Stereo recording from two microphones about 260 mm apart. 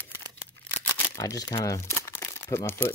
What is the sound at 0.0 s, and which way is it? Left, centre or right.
Scissors, centre.